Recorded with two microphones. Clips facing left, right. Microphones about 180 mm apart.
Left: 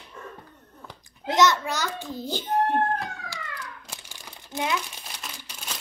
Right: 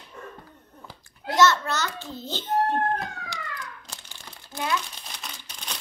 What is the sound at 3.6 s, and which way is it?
Crumpling, 10° left (ahead or behind).